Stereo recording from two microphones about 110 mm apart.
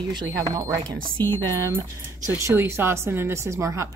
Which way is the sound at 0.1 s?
35° right (ahead or behind).